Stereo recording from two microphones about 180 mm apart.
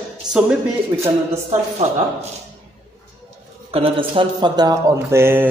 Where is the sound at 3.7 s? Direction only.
30° right (ahead or behind).